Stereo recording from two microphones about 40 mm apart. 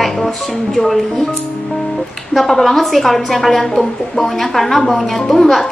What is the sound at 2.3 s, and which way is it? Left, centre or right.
A woman's voice, centre.